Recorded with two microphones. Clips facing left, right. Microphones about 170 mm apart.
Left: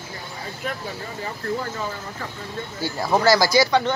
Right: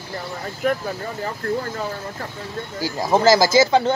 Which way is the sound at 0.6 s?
55° right (ahead or behind).